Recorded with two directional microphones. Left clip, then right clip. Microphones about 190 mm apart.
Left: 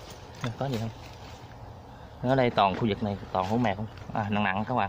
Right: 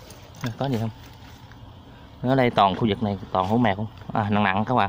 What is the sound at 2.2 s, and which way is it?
Speech, 15° right (ahead or behind).